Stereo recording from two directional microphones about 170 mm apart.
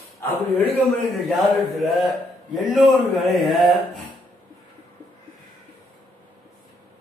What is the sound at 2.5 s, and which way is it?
Speech, centre (ahead or behind).